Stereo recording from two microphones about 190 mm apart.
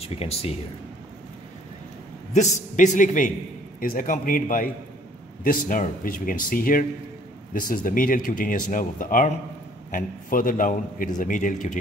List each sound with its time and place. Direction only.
0.0 s a man's voice: 30° left (ahead or behind)
2.3 s a man's voice: 40° left (ahead or behind)